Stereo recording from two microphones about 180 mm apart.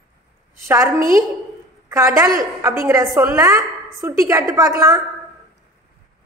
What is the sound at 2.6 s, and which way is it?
A woman's voice, 15° right (ahead or behind).